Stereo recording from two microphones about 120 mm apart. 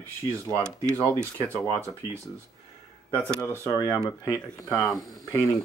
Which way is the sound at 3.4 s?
25° left (ahead or behind).